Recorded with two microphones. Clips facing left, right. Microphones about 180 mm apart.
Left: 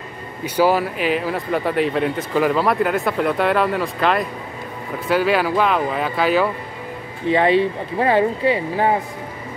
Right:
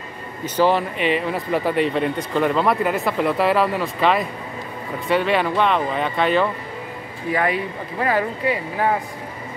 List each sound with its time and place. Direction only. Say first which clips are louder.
0.6 s speech: left 1 dB; 5° left (ahead or behind)
7.2 s speech: left 6 dB; 25° left (ahead or behind)